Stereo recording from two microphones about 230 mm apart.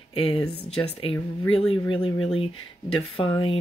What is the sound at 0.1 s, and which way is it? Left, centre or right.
Speech, left.